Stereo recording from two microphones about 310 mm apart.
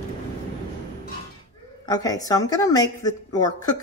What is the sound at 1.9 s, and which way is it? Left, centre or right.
A woman's voice, centre.